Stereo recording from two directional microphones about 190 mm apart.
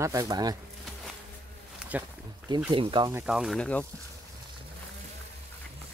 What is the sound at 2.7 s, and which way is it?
Speech, 25° right (ahead or behind).